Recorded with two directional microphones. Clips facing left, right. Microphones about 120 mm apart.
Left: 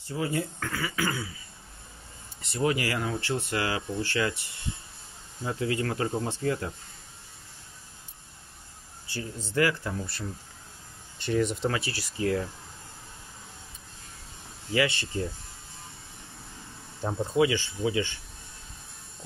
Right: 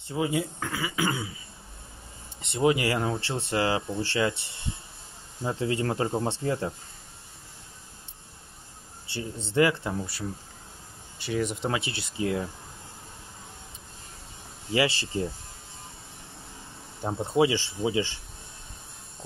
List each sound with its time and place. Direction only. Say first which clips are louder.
0.1 s speech: right 2 dB; 15° right (ahead or behind)
2.4 s speech: right 4 dB; 20° right (ahead or behind)
9.0 s speech: right 1 dB; 25° right (ahead or behind)
11.1 s speech: left 2 dB; 10° right (ahead or behind)
14.7 s speech: right 1 dB; 25° right (ahead or behind)
17.0 s speech: right 1 dB; 20° right (ahead or behind)